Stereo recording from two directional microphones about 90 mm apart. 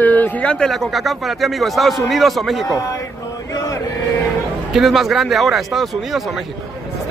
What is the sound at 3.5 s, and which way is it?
Chant, 35° left (ahead or behind).